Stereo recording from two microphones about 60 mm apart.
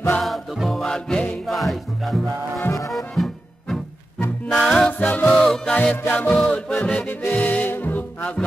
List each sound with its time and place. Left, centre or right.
0.2 s music: centre
0.8 s music: centre
1.5 s music: centre
4.9 s music: left
5.4 s music: centre
5.8 s music: left